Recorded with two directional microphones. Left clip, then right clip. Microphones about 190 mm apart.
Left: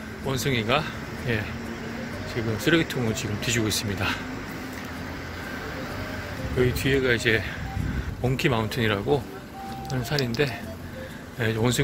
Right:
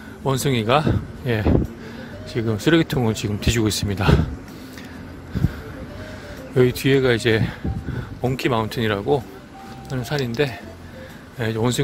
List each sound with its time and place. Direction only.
0.3 s speech: 35° right (ahead or behind)
6.6 s speech: 40° right (ahead or behind)